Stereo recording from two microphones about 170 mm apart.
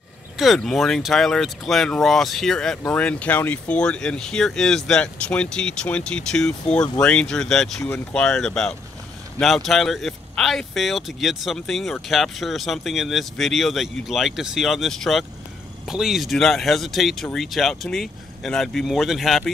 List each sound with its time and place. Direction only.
0.4 s speech: centre (ahead or behind)